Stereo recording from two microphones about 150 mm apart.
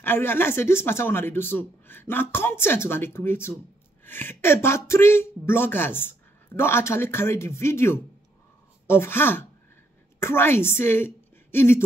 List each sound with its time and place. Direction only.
0.0 s a woman's voice: 15° left (ahead or behind)